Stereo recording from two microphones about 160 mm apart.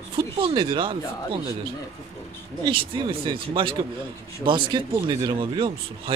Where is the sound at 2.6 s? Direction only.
30° right (ahead or behind).